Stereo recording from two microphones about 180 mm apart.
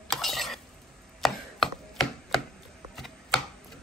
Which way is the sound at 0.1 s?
Centre (ahead or behind).